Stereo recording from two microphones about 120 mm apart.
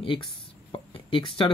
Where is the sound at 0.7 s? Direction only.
50° left (ahead or behind).